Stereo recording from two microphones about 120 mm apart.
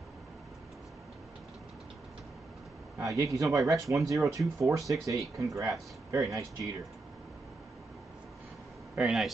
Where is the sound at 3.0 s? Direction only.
30° right (ahead or behind).